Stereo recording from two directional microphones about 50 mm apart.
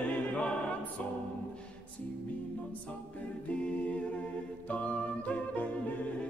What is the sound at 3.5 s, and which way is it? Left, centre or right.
A capella, left.